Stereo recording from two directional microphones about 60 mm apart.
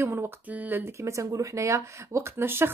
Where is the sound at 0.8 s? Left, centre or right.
Right.